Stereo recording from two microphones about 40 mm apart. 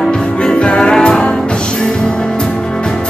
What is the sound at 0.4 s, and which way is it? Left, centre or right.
Music, left.